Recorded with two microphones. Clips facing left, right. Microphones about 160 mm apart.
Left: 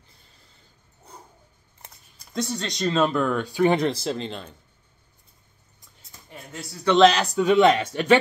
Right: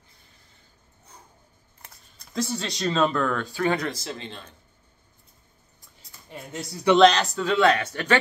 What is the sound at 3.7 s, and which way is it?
Speech, 25° left (ahead or behind).